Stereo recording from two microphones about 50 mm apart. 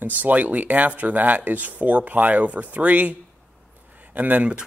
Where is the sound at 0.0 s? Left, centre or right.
Right.